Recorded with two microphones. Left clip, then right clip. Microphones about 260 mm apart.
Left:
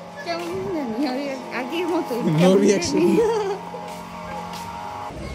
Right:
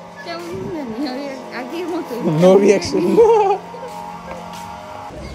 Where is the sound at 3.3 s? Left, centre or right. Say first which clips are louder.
Right 9 dB; right.